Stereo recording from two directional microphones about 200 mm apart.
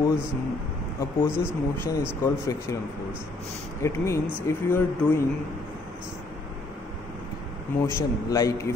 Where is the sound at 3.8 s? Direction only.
15° left (ahead or behind).